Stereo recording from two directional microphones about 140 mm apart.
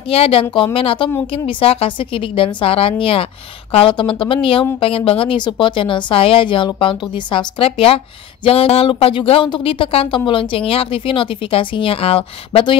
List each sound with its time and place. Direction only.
0.1 s speech: 45° left (ahead or behind)